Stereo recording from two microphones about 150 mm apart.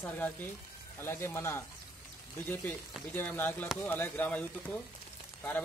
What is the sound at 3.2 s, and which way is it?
Speech, 15° left (ahead or behind).